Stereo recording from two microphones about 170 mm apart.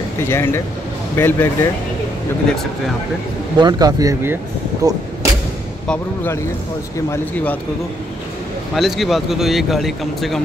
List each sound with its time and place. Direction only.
0.3 s speech: 15° left (ahead or behind)
3.5 s speech: 25° right (ahead or behind)
5.9 s speech: 15° left (ahead or behind)
8.7 s speech: centre (ahead or behind)